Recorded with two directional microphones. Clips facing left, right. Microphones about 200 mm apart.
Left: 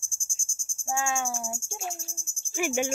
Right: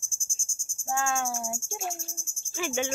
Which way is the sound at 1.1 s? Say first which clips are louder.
Right 1 dB; centre (ahead or behind).